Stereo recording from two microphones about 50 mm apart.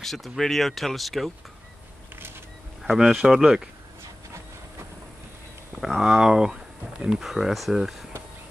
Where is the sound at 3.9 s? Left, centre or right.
Right.